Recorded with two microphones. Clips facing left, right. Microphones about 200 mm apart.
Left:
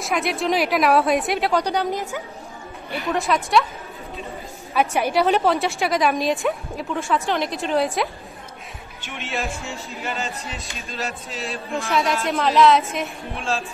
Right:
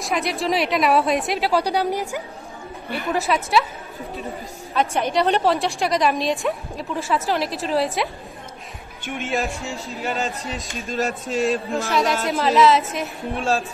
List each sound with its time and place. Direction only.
0.0 s a woman's voice: centre (ahead or behind)
4.7 s a woman's voice: 10° left (ahead or behind)
9.0 s speech: 50° right (ahead or behind)
10.7 s speech: 50° right (ahead or behind)
11.7 s a woman's voice: centre (ahead or behind)